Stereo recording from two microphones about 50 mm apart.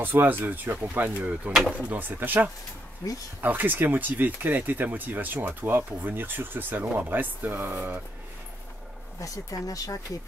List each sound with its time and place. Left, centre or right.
0.0 s speech: right
1.0 s speech: right
9.2 s speech: left